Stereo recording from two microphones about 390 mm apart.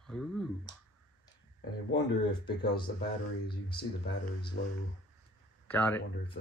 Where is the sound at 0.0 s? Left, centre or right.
Centre.